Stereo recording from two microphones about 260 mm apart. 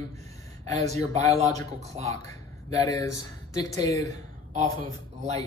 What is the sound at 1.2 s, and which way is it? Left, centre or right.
Speech, centre.